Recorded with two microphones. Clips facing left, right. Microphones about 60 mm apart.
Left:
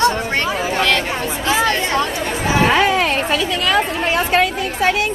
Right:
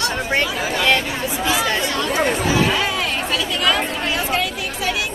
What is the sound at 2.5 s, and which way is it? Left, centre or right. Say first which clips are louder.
Speech: left 5 dB; left.